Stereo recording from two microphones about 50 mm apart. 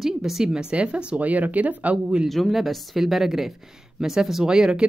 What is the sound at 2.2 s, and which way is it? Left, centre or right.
Speech, centre.